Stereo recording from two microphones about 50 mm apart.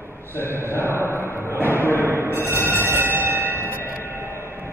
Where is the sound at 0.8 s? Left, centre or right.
Right.